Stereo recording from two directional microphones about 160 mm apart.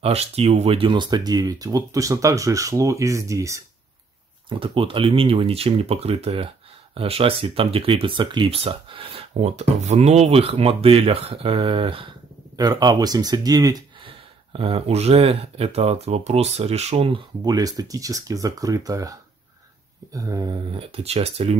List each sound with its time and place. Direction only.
0.0 s speech: 40° right (ahead or behind); by 3.6 s 20° right (ahead or behind)
4.5 s speech: 30° right (ahead or behind)
14.0 s speech: 35° right (ahead or behind)
20.7 s speech: 40° right (ahead or behind)